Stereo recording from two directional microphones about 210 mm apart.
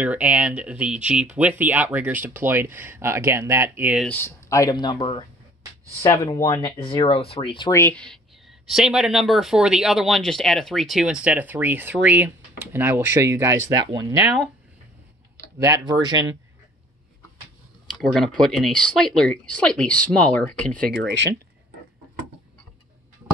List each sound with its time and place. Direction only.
0.0 s speech: 5° right (ahead or behind)
4.0 s speech: 10° left (ahead or behind)
6.8 s speech: 25° left (ahead or behind)
7.8 s speech: 5° left (ahead or behind); by 14.1 s 15° right (ahead or behind)
14.2 s speech: 5° right (ahead or behind)
15.6 s speech: 15° right (ahead or behind)
17.8 s speech: centre (ahead or behind)
21.0 s speech: 55° right (ahead or behind)